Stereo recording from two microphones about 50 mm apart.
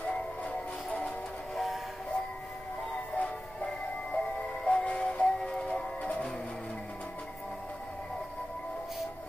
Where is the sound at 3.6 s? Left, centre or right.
Centre.